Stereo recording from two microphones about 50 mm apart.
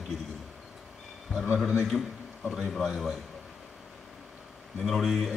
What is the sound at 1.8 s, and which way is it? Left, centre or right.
A man's voice, centre.